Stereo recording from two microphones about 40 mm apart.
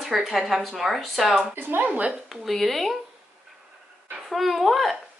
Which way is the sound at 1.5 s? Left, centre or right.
Right.